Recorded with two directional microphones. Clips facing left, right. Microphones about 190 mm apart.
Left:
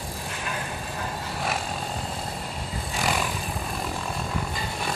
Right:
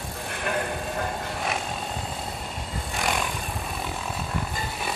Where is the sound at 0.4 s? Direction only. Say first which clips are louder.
Right 7 dB; 55° right (ahead or behind).